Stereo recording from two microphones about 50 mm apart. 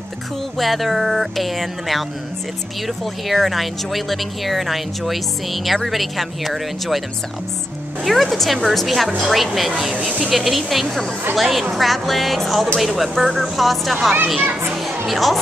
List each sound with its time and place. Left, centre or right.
0.6 s speech: centre
3.3 s speech: centre
8.0 s speech: centre
9.9 s speech: right
10.3 s speech: centre
14.9 s music: centre